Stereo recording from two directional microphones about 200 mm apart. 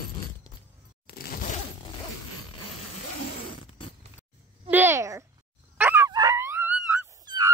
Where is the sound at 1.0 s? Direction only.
50° left (ahead or behind).